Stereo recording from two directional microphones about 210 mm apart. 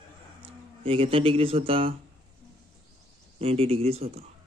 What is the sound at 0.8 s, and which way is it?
Speech, 25° right (ahead or behind).